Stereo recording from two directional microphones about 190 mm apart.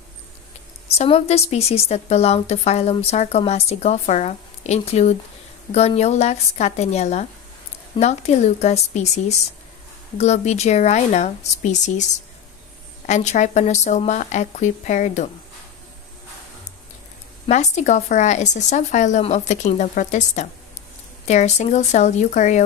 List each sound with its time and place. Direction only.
0.9 s a woman's voice: 35° left (ahead or behind)
17.5 s a woman's voice: 35° left (ahead or behind)